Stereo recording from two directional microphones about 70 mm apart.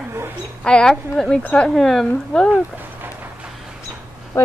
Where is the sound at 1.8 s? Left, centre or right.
Centre.